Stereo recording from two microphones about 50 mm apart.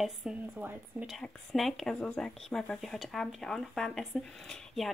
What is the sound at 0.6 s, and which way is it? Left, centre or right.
Speech, right.